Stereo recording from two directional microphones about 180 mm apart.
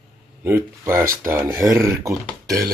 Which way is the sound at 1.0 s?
50° right (ahead or behind).